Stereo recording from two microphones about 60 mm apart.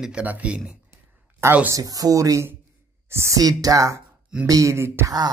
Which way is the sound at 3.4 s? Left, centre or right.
Right.